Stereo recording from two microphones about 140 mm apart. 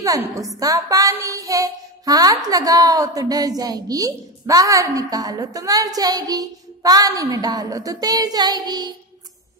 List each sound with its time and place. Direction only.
0.0 s child singing: 25° right (ahead or behind)